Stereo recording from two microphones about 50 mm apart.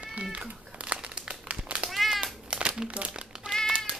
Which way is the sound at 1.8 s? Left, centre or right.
Centre.